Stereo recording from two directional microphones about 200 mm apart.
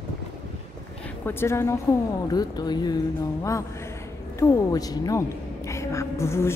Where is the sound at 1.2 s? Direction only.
10° left (ahead or behind).